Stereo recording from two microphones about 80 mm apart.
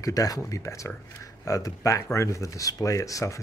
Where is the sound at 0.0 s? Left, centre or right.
Left.